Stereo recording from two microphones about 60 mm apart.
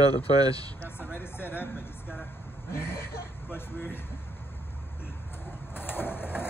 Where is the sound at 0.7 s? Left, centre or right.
Left.